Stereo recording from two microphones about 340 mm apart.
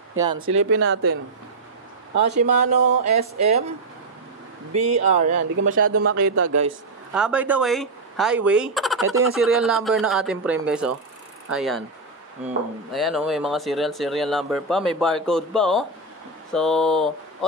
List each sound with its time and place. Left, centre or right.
0.2 s speech: centre
0.7 s speech: right
2.2 s speech: right
5.0 s speech: right
5.6 s speech: right
7.2 s speech: centre
12.9 s speech: centre